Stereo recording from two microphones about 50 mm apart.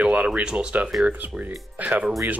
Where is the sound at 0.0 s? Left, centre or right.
Right.